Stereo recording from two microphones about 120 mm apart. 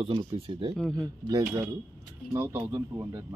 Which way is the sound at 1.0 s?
30° right (ahead or behind).